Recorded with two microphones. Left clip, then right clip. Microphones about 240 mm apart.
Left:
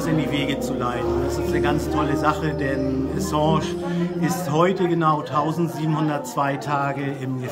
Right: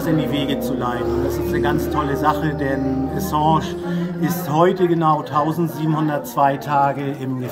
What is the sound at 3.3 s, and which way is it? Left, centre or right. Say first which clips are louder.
Speech: right 4 dB; centre.